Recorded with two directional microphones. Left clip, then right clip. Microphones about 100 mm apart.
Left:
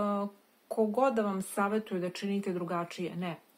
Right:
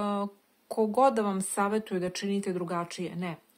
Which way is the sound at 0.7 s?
50° right (ahead or behind).